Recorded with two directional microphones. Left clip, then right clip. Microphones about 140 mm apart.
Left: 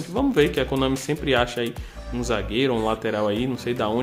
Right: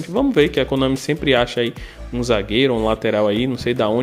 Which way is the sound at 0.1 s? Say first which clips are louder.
Right 4 dB; 35° right (ahead or behind).